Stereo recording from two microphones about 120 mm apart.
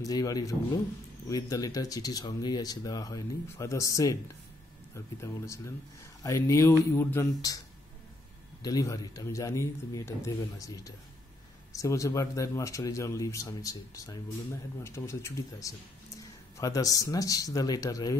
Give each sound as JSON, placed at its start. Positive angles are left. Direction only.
{"t": 0.0, "sound": "speech", "side_deg": 30}
{"t": 8.6, "sound": "speech", "side_deg": 30}